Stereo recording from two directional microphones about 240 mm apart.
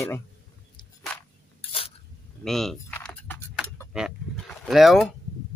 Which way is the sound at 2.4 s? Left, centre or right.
Centre.